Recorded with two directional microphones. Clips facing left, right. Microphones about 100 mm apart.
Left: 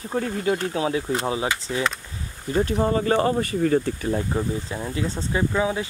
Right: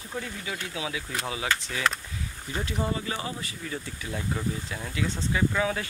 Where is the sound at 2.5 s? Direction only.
45° left (ahead or behind).